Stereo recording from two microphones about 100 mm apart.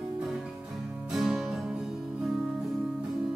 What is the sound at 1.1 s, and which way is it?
Music, centre (ahead or behind).